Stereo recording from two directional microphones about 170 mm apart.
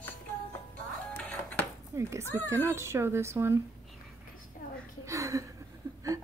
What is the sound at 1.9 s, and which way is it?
Speech, 15° right (ahead or behind).